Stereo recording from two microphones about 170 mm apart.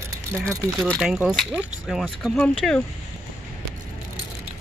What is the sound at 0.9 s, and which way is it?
Speech, 5° right (ahead or behind).